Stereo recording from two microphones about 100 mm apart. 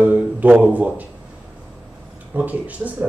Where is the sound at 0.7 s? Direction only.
15° right (ahead or behind).